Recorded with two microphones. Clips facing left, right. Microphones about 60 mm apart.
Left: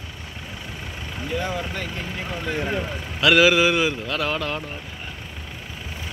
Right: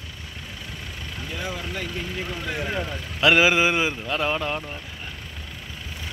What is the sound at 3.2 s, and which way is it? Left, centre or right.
Speech, right.